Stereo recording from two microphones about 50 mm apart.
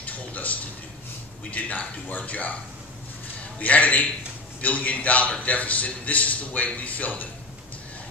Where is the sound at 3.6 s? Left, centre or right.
Left.